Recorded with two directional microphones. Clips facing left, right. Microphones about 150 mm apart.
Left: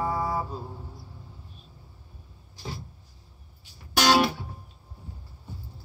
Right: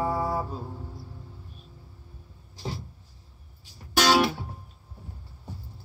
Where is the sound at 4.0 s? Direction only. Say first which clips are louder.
Even; centre (ahead or behind).